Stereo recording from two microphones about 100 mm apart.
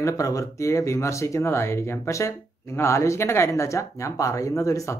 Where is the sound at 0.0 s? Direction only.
35° left (ahead or behind).